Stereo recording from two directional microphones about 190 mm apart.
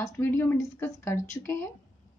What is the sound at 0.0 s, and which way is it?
Speech, 15° left (ahead or behind).